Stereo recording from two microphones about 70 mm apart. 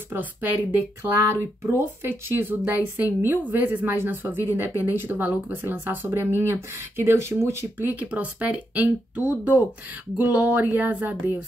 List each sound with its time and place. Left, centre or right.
0.1 s speech: right
1.3 s speech: right
7.9 s speech: right